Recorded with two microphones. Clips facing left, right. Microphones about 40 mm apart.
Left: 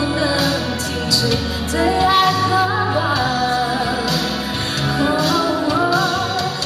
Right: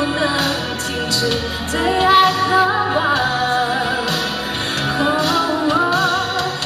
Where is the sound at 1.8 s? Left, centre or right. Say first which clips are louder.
Right 2 dB; right.